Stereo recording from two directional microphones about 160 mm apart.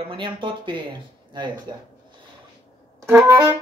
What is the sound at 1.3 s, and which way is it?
Speech, 30° right (ahead or behind).